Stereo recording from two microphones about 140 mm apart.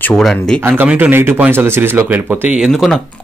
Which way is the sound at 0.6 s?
10° right (ahead or behind).